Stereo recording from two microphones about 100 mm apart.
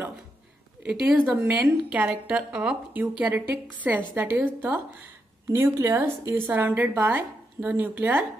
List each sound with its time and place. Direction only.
1.3 s a woman's voice: 20° right (ahead or behind)
5.5 s a woman's voice: 30° right (ahead or behind)